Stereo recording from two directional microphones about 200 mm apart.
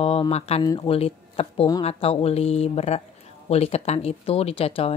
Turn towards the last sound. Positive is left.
turn(degrees=30)  # may be behind; listen again after turning